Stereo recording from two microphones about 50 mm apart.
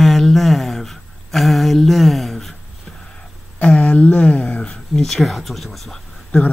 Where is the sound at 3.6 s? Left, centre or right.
Left.